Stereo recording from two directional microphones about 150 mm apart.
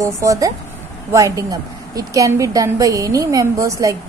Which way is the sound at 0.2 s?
20° right (ahead or behind).